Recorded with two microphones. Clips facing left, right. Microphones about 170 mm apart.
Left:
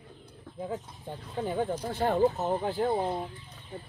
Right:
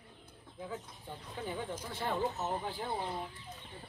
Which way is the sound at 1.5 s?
50° left (ahead or behind).